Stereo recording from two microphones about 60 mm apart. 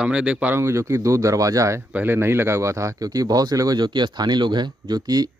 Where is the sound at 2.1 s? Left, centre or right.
Right.